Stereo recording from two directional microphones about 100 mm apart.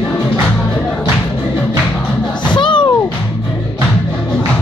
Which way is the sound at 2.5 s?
55° left (ahead or behind).